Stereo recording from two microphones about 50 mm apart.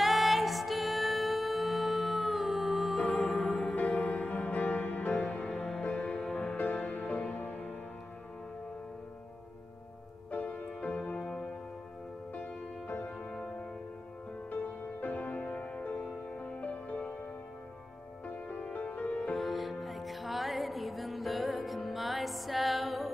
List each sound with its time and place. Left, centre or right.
0.0 s music: centre
3.7 s music: left
6.5 s music: left
10.8 s music: left
12.4 s music: left
13.3 s music: centre
14.5 s music: left
18.2 s music: left
19.3 s music: centre